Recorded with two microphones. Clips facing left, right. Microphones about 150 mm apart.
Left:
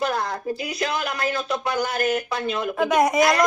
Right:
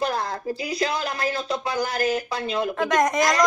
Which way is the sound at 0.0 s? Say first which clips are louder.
Left 1 dB; 30° right (ahead or behind).